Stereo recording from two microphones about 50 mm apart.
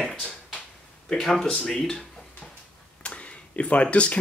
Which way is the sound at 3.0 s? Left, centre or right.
Left.